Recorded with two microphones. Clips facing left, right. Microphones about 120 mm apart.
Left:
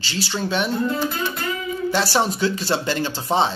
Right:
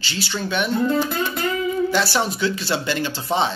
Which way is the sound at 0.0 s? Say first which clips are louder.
Left 1 dB; 35° left (ahead or behind).